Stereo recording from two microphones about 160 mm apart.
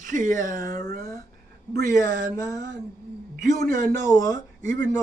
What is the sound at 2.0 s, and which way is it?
Speech, 20° left (ahead or behind).